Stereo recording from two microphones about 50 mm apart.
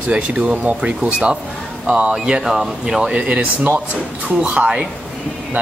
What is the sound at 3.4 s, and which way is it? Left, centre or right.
Speech, right.